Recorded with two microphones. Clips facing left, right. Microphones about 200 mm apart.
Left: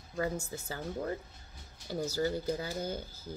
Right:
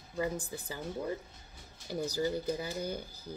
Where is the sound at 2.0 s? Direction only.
15° right (ahead or behind).